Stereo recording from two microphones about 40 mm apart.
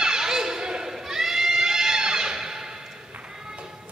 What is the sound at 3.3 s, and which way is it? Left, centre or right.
Music, centre.